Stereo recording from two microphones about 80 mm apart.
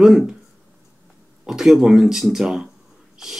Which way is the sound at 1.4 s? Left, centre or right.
Centre.